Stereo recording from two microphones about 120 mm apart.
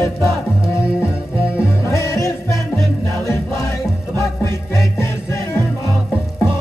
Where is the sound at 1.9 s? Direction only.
25° left (ahead or behind).